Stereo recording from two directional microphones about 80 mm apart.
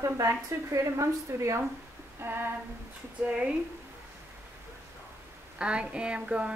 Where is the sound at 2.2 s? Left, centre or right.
Right.